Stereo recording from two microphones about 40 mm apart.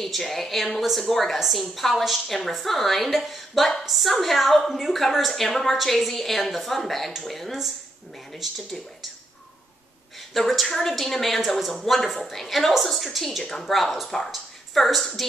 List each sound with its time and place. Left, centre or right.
0.0 s a woman's voice: centre
10.3 s a woman's voice: centre